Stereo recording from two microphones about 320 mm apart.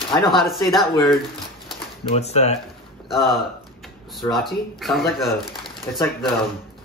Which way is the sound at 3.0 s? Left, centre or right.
Centre.